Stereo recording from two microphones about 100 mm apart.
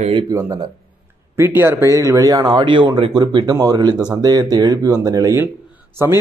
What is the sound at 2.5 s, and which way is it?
Speech, 55° right (ahead or behind).